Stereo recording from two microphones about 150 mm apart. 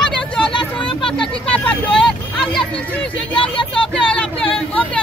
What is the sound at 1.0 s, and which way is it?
Speech, 5° left (ahead or behind).